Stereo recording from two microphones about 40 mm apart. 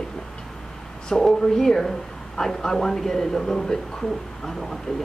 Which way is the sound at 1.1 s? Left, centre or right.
Centre.